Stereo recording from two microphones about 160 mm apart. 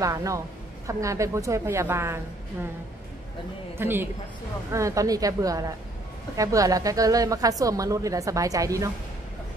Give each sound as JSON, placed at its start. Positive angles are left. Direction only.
{"t": 0.0, "sound": "a woman's voice", "side_deg": -20}
{"t": 3.7, "sound": "a woman's voice", "side_deg": -15}